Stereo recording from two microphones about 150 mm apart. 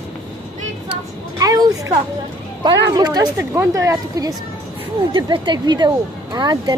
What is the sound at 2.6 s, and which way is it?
Speech, 25° right (ahead or behind).